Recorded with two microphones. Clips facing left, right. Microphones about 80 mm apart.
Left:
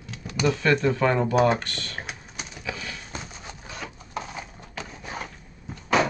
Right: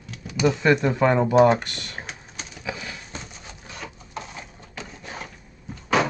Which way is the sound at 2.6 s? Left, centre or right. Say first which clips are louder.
Right 2 dB; centre.